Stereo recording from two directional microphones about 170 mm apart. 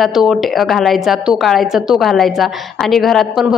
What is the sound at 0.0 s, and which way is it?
A woman's voice, centre (ahead or behind).